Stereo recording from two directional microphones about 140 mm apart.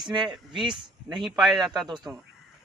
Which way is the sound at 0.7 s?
Centre (ahead or behind).